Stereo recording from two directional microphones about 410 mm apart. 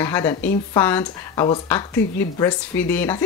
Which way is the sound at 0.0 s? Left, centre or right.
Centre.